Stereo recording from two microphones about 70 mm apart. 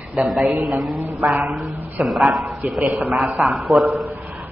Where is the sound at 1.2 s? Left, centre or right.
Right.